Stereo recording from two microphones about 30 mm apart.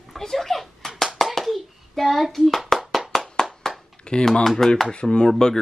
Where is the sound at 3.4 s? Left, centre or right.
Centre.